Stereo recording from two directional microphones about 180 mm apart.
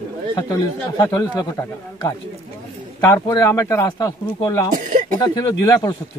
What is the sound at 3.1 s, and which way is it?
Speech, 15° left (ahead or behind).